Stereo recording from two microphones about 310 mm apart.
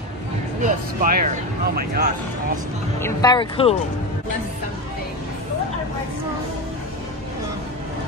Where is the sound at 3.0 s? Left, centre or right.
Centre.